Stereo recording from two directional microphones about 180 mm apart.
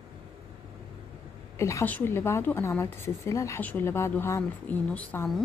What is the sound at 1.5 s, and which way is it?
A woman's voice, 15° left (ahead or behind).